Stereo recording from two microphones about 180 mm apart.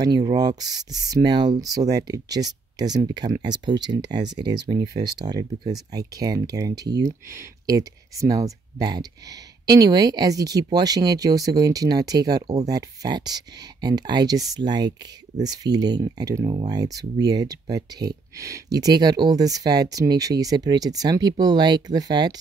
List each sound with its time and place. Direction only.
0.0 s speech: 20° right (ahead or behind)